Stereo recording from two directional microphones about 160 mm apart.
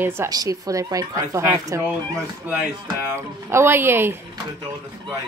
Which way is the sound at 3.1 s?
15° right (ahead or behind).